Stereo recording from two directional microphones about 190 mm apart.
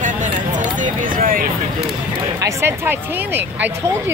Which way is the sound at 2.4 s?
15° right (ahead or behind).